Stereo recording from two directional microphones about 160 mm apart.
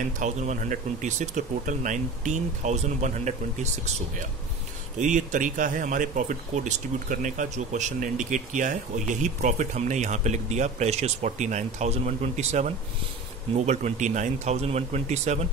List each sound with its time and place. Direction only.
0.0 s speech: 50° right (ahead or behind)
4.9 s speech: 50° right (ahead or behind)